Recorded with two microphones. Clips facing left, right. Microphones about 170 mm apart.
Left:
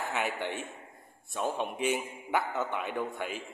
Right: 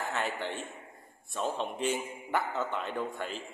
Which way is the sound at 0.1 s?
15° left (ahead or behind).